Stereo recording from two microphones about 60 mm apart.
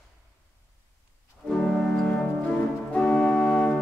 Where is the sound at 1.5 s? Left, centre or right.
Centre; by 3.7 s left.